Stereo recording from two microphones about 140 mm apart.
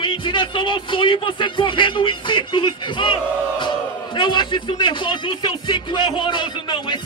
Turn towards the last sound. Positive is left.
turn(degrees=35)  # may be behind; listen again after turning